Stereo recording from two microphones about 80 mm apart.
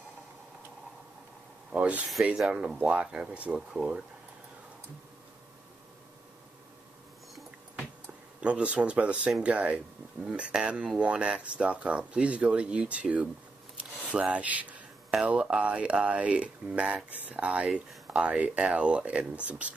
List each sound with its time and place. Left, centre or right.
1.7 s speech: centre
8.4 s speech: centre
13.7 s a sound: centre
15.2 s speech: centre